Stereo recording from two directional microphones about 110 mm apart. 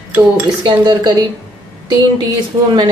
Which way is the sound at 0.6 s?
40° right (ahead or behind).